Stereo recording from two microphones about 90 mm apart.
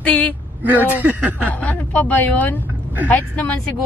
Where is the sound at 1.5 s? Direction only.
15° left (ahead or behind).